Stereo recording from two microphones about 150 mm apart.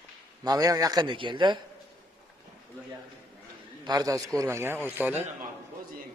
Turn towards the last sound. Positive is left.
turn(degrees=-15)  # may be behind; listen again after turning